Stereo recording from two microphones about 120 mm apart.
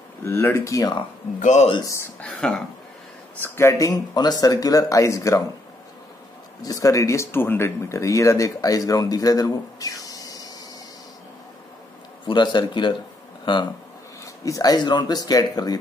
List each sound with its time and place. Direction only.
0.2 s speech: 20° left (ahead or behind)
1.4 s speech: 80° left
2.1 s speech: 10° left (ahead or behind)
3.3 s speech: 20° left (ahead or behind)
6.6 s speech: 30° left (ahead or behind)
12.3 s speech: 40° left (ahead or behind)
14.2 s speech: 30° left (ahead or behind)